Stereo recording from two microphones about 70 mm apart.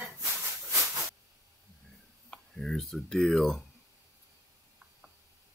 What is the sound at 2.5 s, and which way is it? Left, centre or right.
Speech, centre.